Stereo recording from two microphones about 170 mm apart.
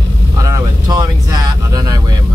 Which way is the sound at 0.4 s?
20° right (ahead or behind).